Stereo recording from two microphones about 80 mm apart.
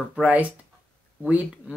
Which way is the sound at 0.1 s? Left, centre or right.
Centre.